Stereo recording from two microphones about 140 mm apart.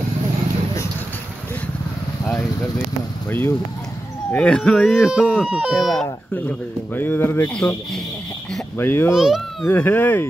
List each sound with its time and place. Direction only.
3.3 s speech: 15° left (ahead or behind)
5.5 s speech: 5° right (ahead or behind)
6.9 s speech: 15° left (ahead or behind)
9.1 s speech: 5° right (ahead or behind)
9.7 s speech: 15° left (ahead or behind)